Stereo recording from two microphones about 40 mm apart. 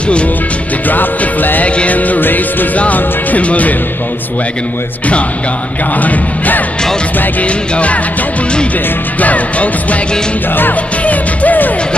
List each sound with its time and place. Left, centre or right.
0.8 s music: left
1.8 s music: left
2.8 s music: left
5.9 s music: left
7.4 s music: left
9.2 s music: left
11.1 s music: left